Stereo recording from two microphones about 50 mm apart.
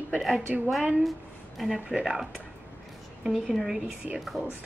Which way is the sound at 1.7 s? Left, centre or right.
Centre.